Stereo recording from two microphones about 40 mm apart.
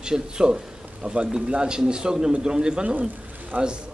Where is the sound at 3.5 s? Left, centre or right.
Right.